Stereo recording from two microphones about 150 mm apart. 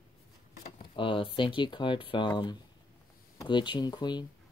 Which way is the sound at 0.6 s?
35° left (ahead or behind).